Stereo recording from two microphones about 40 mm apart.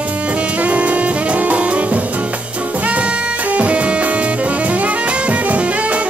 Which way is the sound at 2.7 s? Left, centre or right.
Right.